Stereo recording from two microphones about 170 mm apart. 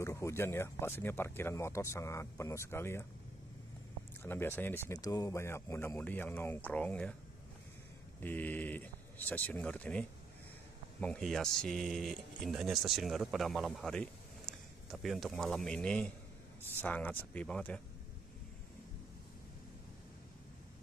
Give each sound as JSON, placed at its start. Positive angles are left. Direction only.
{"t": 0.0, "sound": "speech", "side_deg": 20}
{"t": 4.2, "sound": "speech", "side_deg": 15}
{"t": 8.2, "sound": "speech", "side_deg": 10}